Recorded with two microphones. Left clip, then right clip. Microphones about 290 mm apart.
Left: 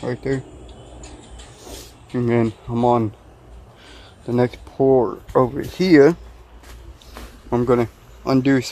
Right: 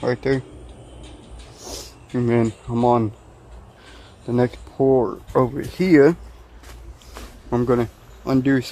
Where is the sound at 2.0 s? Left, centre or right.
Centre.